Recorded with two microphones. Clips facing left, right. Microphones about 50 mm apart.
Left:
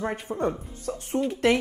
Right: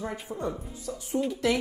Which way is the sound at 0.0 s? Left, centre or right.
Left.